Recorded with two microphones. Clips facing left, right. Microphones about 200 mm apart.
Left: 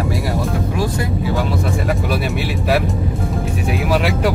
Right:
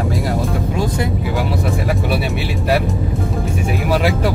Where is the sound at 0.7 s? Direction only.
20° right (ahead or behind).